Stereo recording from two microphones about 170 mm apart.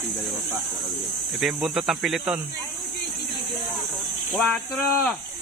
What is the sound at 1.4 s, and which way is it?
Speech, centre (ahead or behind).